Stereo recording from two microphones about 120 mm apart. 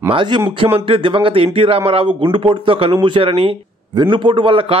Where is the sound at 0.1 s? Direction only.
45° right (ahead or behind).